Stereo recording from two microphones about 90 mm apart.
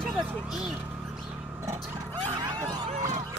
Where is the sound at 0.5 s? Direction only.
5° right (ahead or behind).